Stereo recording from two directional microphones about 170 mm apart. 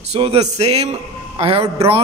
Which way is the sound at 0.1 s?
35° right (ahead or behind).